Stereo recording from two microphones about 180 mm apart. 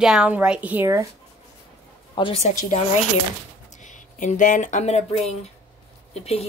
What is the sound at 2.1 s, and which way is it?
Speech, 30° left (ahead or behind).